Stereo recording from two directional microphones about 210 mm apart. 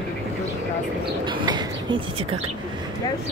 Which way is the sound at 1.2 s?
20° right (ahead or behind).